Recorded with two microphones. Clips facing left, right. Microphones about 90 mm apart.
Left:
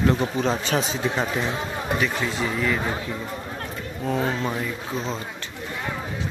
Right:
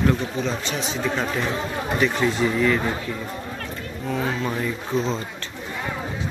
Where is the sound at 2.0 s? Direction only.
Centre (ahead or behind).